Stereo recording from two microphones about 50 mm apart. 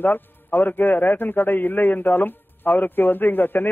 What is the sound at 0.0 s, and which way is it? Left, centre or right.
A man's voice, left.